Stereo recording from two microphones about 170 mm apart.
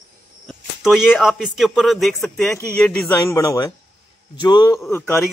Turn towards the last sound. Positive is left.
turn(degrees=15)  # may be behind; listen again after turning